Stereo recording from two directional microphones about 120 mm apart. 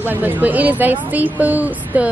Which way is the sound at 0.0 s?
15° right (ahead or behind).